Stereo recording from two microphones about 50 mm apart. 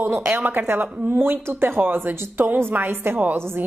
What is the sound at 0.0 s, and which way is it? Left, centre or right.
A woman's voice, right.